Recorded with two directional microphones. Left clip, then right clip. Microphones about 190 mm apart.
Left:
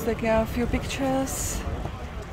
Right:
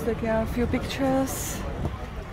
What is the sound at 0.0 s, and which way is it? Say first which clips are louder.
Speech: left 2 dB; 5° left (ahead or behind).